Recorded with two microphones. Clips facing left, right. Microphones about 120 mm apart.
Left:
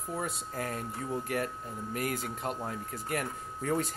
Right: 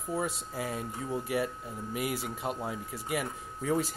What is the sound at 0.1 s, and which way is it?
Speech, 5° right (ahead or behind).